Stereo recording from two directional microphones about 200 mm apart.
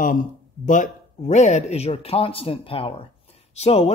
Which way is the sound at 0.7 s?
35° left (ahead or behind).